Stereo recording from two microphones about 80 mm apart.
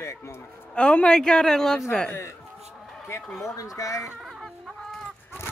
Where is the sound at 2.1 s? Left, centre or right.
Left.